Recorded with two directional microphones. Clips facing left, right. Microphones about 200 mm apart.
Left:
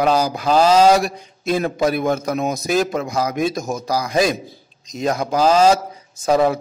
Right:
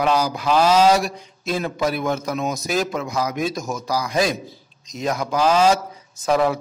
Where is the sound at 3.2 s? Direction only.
50° left (ahead or behind).